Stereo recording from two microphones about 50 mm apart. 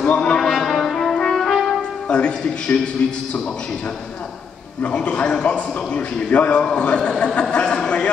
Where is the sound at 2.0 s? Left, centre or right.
Left.